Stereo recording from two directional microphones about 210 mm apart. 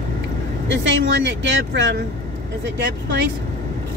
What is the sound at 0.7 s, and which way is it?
Speech, 60° right (ahead or behind).